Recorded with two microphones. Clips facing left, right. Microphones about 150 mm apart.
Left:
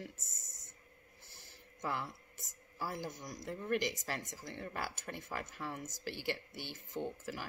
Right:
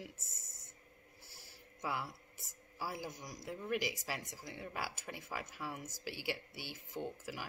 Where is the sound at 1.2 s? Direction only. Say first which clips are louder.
Even; 10° right (ahead or behind).